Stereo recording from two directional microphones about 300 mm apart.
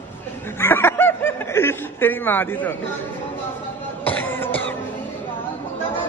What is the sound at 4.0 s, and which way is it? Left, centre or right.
Music, centre.